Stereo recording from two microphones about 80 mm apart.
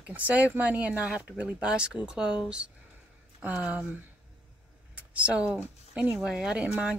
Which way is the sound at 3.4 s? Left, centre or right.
Centre.